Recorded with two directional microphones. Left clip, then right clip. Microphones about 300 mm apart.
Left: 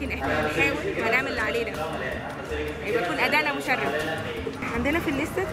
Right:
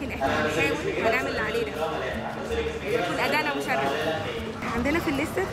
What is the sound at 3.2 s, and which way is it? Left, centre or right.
Speech, centre.